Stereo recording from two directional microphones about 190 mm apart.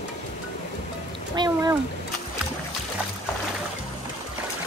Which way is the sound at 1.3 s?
25° right (ahead or behind).